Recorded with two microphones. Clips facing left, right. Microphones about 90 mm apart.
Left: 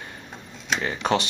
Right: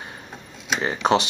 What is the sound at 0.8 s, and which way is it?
Speech, 25° right (ahead or behind).